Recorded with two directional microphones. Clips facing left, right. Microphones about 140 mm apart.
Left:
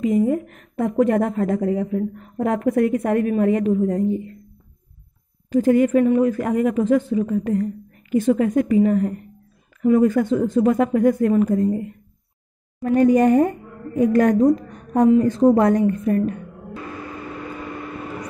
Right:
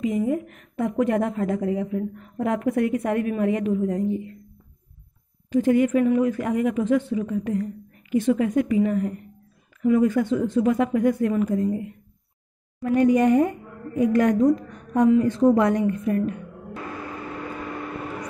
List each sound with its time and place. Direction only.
0.0 s a woman's voice: 45° left (ahead or behind)
5.5 s a woman's voice: 40° left (ahead or behind)
12.9 s a woman's voice: 45° left (ahead or behind)